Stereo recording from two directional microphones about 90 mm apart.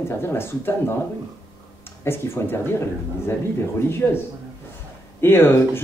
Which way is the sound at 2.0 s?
25° left (ahead or behind).